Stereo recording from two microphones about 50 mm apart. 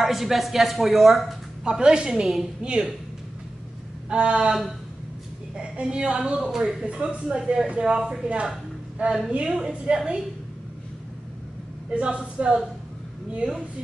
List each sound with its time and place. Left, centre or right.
0.0 s a woman's voice: centre
1.6 s a woman's voice: centre
2.6 s a woman's voice: centre
4.1 s a woman's voice: centre
5.6 s a woman's voice: right
6.5 s a woman's voice: centre
6.9 s a woman's voice: right
9.3 s a woman's voice: centre
11.9 s a woman's voice: right